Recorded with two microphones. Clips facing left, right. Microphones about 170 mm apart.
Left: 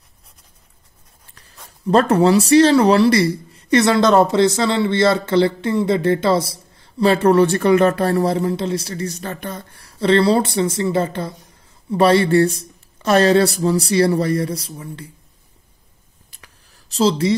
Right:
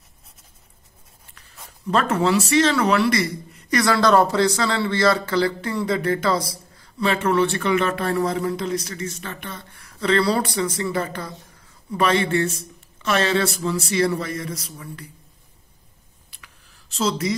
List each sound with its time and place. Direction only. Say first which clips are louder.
1.9 s speech: left 6 dB; 35° left (ahead or behind)
16.3 s a sound: left 2 dB; 45° left (ahead or behind)
16.9 s speech: left 7 dB; 30° left (ahead or behind)